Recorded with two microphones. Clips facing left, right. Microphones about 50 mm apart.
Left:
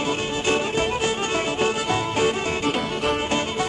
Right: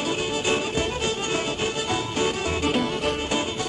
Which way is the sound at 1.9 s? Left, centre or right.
Centre.